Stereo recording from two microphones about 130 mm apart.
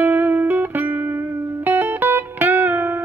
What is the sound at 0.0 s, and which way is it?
Music, 15° right (ahead or behind).